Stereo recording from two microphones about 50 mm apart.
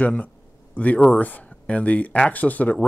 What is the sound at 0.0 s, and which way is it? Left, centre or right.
Speech, left.